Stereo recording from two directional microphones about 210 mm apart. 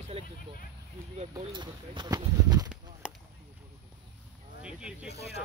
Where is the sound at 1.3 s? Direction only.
20° right (ahead or behind).